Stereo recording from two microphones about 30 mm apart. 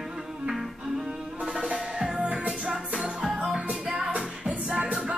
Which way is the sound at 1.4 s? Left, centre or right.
Right.